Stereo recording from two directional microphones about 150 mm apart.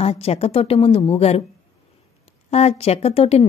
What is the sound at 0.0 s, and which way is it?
A woman's voice, 45° left (ahead or behind).